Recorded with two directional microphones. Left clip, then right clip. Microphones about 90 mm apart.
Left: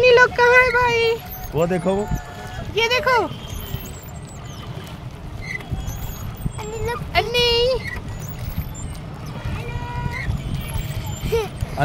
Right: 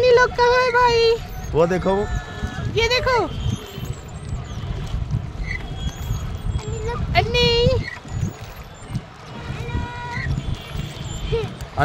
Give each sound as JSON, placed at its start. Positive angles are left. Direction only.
{"t": 0.0, "sound": "speech", "side_deg": -20}
{"t": 1.7, "sound": "speech", "side_deg": -20}
{"t": 2.7, "sound": "speech", "side_deg": -5}
{"t": 7.1, "sound": "a sound", "side_deg": 5}